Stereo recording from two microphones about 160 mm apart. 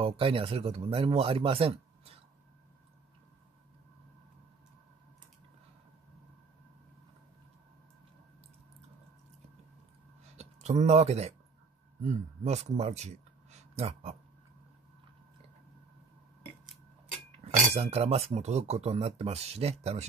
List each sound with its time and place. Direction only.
0.0 s speech: 35° right (ahead or behind)
10.3 s speech: 40° right (ahead or behind)
17.4 s speech: 40° right (ahead or behind)